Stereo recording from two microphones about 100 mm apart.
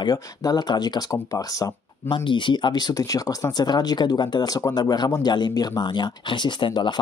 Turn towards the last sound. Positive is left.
turn(degrees=55)  # may be behind; listen again after turning